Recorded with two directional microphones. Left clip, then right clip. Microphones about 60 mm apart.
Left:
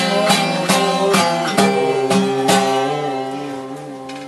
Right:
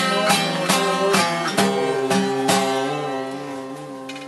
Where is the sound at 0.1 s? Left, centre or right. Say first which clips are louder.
Left 3 dB; centre.